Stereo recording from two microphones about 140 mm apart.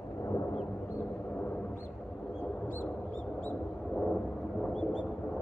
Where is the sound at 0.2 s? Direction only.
25° left (ahead or behind).